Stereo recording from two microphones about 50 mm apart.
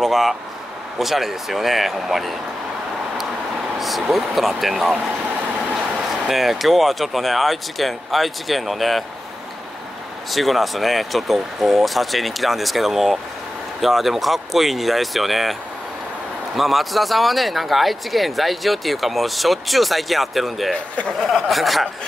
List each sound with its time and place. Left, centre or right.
0.0 s vehicle: centre
0.9 s speech: centre
3.8 s speech: centre
5.9 s speech: centre
10.3 s speech: centre
16.5 s speech: centre
20.7 s speech: left
21.2 s speech: centre